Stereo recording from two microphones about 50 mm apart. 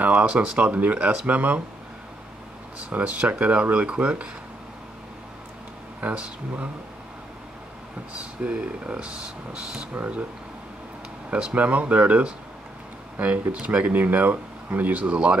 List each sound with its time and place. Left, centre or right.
0.0 s speech: right
0.9 s speech: centre
1.2 s speech: right
2.8 s speech: right
5.9 s speech: right
8.1 s speech: right
9.9 s speech: right
11.2 s speech: centre